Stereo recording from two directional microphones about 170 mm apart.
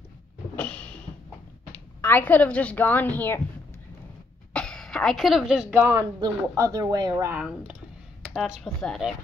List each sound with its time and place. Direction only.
0.6 s a sound: 10° left (ahead or behind)
2.0 s a woman's voice: 10° left (ahead or behind)
4.6 s speech: 5° left (ahead or behind)
5.9 s speech: 15° right (ahead or behind)
7.2 s speech: 10° right (ahead or behind)